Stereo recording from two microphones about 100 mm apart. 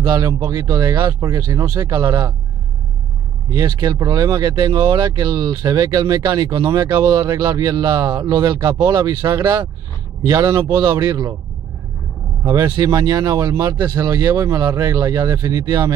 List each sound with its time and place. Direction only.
0.0 s speech: 45° right (ahead or behind)
0.3 s speech: 35° right (ahead or behind)
3.5 s speech: 45° right (ahead or behind)
12.4 s speech: 40° right (ahead or behind)